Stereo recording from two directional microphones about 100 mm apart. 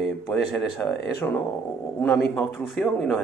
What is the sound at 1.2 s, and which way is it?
Speech, 25° left (ahead or behind).